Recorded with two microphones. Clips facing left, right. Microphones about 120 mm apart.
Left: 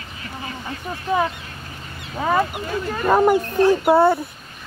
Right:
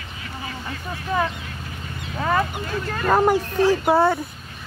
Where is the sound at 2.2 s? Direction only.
15° left (ahead or behind).